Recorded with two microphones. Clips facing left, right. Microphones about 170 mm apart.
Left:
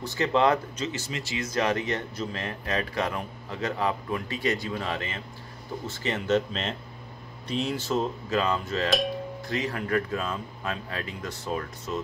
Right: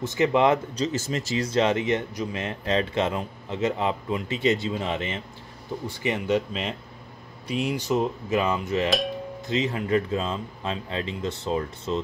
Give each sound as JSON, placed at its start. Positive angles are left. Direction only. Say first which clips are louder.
{"t": 0.0, "sound": "speech", "louder": "right 3 dB", "side_deg": -20}
{"t": 0.7, "sound": "speech", "louder": "right 6 dB", "side_deg": -40}